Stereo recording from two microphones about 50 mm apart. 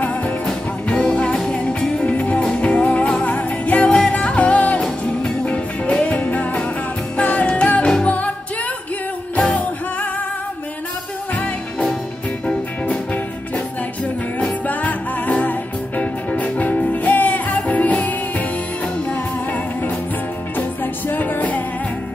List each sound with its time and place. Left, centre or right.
0.5 s music: centre
9.4 s music: left
12.8 s music: left
14.4 s music: left
20.5 s music: left